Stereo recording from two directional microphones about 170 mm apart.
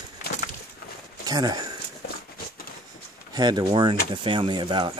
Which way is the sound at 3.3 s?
25° right (ahead or behind).